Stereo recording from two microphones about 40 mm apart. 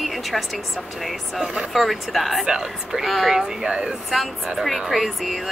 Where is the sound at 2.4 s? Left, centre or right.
Right.